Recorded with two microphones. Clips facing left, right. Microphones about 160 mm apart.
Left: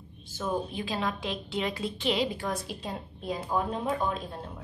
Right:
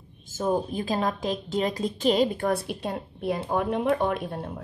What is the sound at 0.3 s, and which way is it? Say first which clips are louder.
A woman's voice: right 6 dB; 45° right (ahead or behind).